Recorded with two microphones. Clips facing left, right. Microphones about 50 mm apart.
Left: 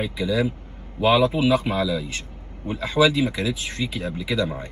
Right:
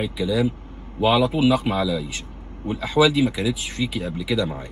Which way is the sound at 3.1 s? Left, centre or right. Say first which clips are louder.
Right 2 dB; left.